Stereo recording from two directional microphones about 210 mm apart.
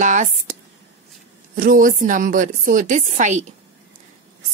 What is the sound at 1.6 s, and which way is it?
A woman's voice, 40° right (ahead or behind).